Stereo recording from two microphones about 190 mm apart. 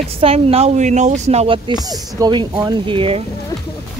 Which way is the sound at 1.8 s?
20° right (ahead or behind).